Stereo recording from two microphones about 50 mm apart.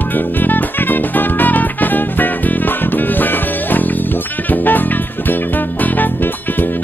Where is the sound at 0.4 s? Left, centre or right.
Left.